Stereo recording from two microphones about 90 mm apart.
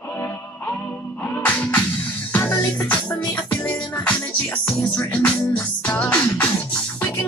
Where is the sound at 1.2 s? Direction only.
15° left (ahead or behind).